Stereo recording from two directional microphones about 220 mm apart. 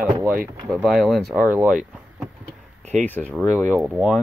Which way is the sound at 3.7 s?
5° right (ahead or behind).